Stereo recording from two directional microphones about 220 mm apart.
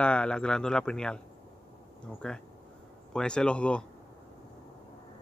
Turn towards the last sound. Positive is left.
turn(degrees=5)  # may be behind; listen again after turning